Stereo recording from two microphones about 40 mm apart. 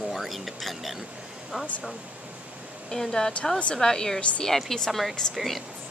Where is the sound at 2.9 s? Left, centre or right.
Centre.